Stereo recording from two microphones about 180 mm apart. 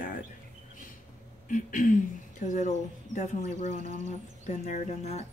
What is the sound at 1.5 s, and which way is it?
Speech, 45° left (ahead or behind).